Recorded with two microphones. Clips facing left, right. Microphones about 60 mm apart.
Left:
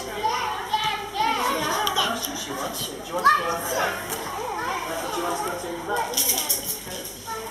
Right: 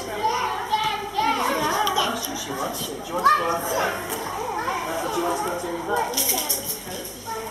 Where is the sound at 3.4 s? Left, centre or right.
Centre.